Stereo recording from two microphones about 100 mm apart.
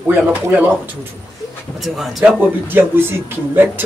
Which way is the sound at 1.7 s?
Centre (ahead or behind).